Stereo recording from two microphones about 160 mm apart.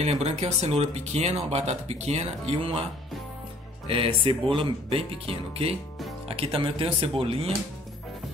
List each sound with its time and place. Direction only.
0.0 s speech: 40° right (ahead or behind)
3.8 s speech: 35° right (ahead or behind)